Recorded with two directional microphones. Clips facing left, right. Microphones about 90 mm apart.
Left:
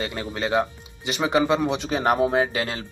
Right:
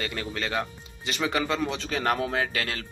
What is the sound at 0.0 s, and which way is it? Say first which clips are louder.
Speech: left 4 dB; 20° left (ahead or behind).